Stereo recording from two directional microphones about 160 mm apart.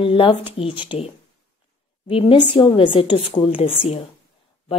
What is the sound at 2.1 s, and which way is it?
Speech, 35° left (ahead or behind).